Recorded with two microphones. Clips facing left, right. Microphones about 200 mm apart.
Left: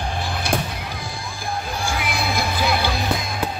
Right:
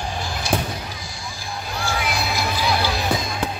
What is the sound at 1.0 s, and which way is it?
Music, 55° left (ahead or behind).